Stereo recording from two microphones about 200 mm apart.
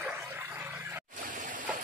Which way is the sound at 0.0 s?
10° right (ahead or behind).